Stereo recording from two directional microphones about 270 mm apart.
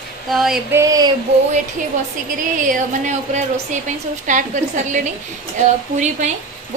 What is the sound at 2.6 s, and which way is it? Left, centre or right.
A woman's voice, right.